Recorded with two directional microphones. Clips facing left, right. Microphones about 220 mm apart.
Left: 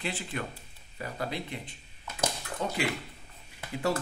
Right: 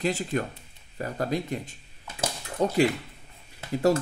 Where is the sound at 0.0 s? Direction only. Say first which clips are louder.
Right 8 dB; 40° right (ahead or behind).